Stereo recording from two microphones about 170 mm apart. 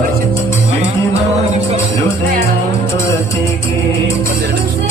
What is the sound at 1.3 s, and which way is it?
Music, 40° right (ahead or behind).